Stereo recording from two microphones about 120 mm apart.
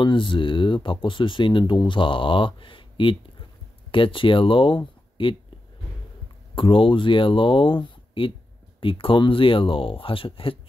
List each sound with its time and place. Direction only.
0.0 s speech: 45° left (ahead or behind)
6.5 s speech: 45° left (ahead or behind)